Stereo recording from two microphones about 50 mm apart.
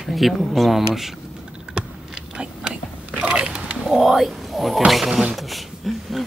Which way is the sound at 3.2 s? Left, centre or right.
Right.